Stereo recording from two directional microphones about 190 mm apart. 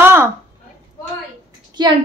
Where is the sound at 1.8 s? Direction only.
25° right (ahead or behind).